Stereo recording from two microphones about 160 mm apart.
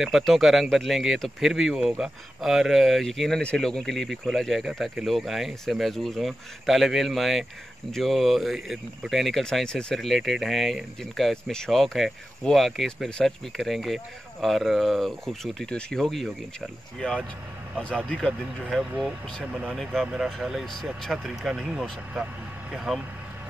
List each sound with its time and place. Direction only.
0.0 s speech: centre (ahead or behind)
17.7 s speech: 5° left (ahead or behind)